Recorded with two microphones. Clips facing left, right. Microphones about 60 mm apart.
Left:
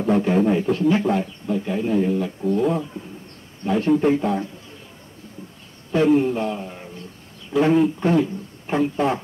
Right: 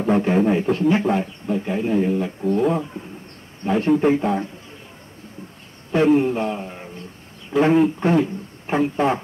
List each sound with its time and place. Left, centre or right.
0.0 s speech: right
5.9 s a man's voice: right